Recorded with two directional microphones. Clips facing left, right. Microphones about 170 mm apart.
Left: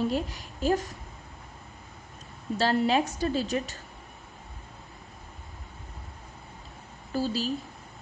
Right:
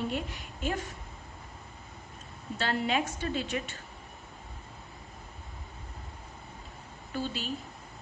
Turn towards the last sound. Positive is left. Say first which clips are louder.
# left 6 dB
turn(degrees=35)  # may be behind; listen again after turning